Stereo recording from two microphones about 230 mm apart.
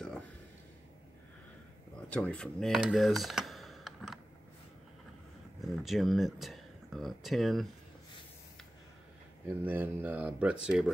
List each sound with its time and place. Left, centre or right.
2.0 s speech: centre
5.6 s speech: centre
9.5 s speech: centre